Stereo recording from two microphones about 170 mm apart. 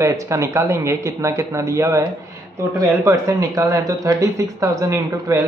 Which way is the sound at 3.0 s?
20° right (ahead or behind).